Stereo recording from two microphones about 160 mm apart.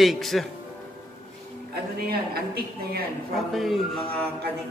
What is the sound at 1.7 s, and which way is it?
Speech, 75° right (ahead or behind).